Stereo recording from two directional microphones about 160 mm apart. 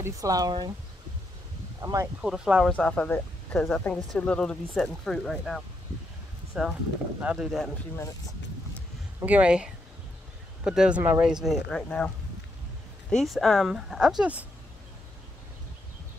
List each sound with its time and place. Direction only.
0.0 s speech: 20° right (ahead or behind)
1.8 s speech: 20° right (ahead or behind)
2.2 s speech: 5° right (ahead or behind)
2.7 s speech: 10° left (ahead or behind)
9.2 s speech: 10° right (ahead or behind)
13.1 s speech: centre (ahead or behind)